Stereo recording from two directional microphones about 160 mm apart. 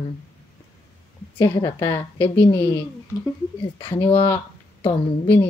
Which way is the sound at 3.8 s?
35° left (ahead or behind).